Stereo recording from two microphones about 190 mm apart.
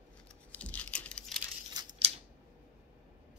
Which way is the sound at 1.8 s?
20° right (ahead or behind).